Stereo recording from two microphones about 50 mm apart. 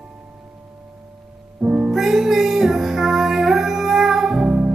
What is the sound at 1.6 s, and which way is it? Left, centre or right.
Music, centre.